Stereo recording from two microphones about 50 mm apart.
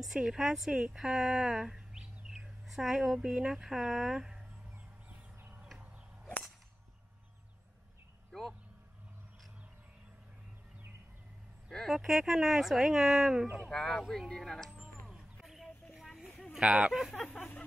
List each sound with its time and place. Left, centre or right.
0.0 s speech: centre
0.9 s bird: centre
2.6 s speech: centre
8.3 s a sound: centre
11.9 s speech: centre
13.7 s speech: centre
14.7 s a sound: centre
16.5 s speech: centre
17.1 s speech: centre
17.4 s a sound: left